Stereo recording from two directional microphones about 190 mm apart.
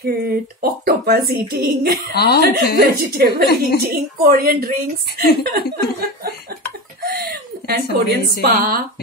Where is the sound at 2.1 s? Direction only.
55° left (ahead or behind).